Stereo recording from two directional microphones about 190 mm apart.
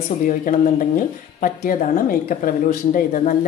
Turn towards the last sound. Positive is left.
turn(degrees=45)  # may be behind; listen again after turning